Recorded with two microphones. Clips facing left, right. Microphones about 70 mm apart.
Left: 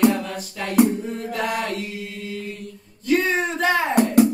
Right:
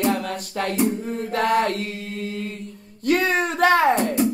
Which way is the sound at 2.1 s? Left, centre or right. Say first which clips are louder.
Right 2 dB; right.